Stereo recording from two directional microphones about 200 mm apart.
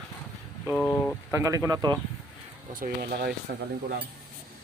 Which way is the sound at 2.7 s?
50° right (ahead or behind).